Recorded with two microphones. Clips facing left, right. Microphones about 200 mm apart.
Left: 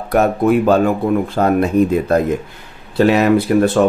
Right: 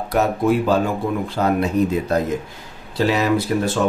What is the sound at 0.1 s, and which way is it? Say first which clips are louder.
Speech: left 5 dB; 55° left (ahead or behind).